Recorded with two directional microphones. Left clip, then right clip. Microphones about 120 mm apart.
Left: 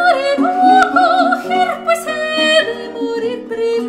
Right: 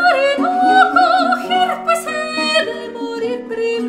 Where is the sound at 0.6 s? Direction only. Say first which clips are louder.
Left 1 dB; 30° right (ahead or behind).